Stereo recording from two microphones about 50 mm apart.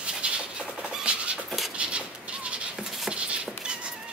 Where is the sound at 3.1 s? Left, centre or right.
Right.